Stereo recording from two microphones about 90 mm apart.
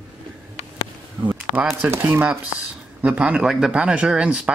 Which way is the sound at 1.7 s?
30° right (ahead or behind).